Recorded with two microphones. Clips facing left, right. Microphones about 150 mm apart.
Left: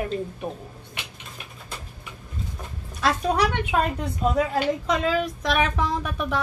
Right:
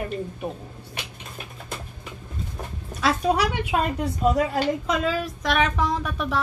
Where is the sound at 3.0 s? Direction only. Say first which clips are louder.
Right 1 dB; 5° right (ahead or behind).